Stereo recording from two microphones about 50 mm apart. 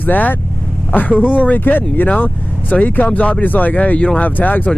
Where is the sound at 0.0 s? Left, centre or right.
Left.